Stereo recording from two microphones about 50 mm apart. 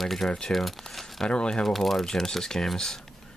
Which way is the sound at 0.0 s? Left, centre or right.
Centre.